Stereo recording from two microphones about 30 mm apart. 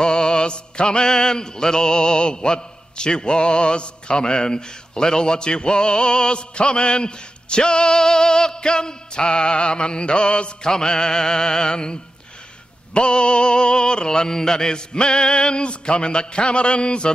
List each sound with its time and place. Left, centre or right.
0.0 s mantra: left
10.6 s mantra: left
15.0 s a sound: left